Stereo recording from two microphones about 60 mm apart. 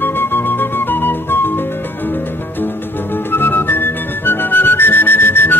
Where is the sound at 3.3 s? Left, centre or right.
Left.